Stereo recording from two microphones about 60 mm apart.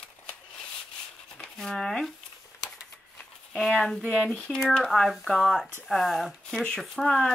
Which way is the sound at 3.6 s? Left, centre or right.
Centre.